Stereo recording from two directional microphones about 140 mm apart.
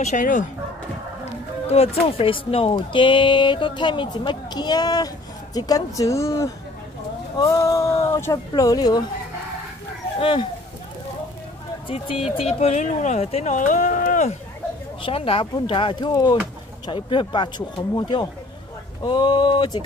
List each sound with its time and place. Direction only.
0.0 s speech: 65° left (ahead or behind)
1.2 s speech: 45° left (ahead or behind); by 9.0 s 30° left (ahead or behind)
11.9 s speech: 45° left (ahead or behind); by 14.3 s 60° left (ahead or behind)
15.0 s speech: 40° left (ahead or behind)